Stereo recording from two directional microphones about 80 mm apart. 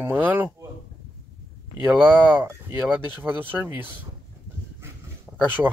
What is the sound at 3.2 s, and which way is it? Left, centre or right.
Speech, right.